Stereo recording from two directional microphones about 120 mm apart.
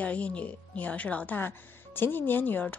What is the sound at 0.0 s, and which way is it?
Speech, 10° left (ahead or behind).